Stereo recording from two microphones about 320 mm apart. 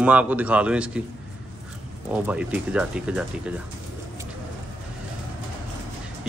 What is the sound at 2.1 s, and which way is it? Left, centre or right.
Speech, centre.